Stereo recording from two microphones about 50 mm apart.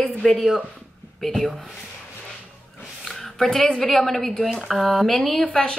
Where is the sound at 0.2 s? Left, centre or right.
Centre.